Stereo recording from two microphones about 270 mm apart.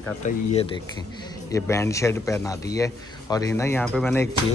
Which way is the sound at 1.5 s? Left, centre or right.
Centre.